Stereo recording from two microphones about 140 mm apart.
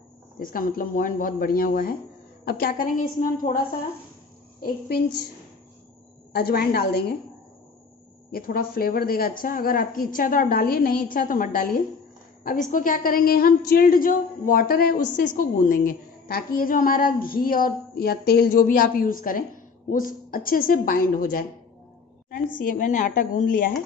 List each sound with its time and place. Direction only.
0.4 s a woman's voice: 90° left
4.6 s a woman's voice: 90° left
6.4 s a woman's voice: 90° left
8.3 s a woman's voice: 90° left
22.3 s a woman's voice: 75° left (ahead or behind)